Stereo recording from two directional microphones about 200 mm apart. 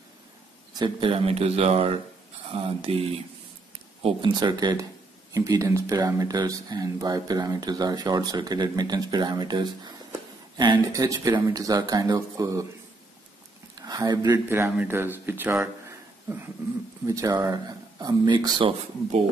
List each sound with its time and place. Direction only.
0.7 s speech: 25° right (ahead or behind)
13.7 s speech: 20° right (ahead or behind)
17.0 s speech: 15° right (ahead or behind)